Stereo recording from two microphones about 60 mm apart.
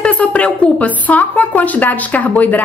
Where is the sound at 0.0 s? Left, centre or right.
Left.